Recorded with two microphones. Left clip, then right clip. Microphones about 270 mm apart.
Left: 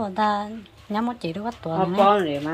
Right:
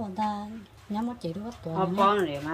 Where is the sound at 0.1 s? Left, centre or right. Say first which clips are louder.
Left 8 dB; centre.